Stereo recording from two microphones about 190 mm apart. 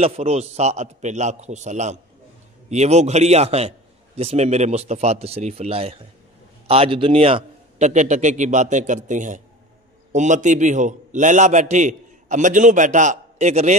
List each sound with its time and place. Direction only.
0.0 s a man's voice: 35° right (ahead or behind)